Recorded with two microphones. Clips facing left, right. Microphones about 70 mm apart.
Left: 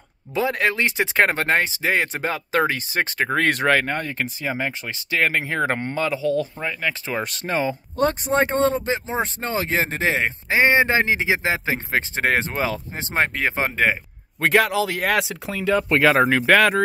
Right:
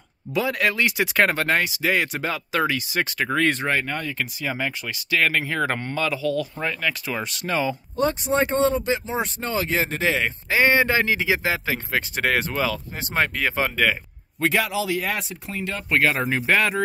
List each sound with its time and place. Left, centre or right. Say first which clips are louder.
0.3 s speech: left 1 dB; left
3.4 s speech: left 7 dB; left
3.8 s speech: left 2 dB; left
8.0 s speech: left 2 dB; left
14.4 s a man's voice: left 4 dB; left
15.1 s speech: left 7 dB; left
16.2 s speech: left 5 dB; left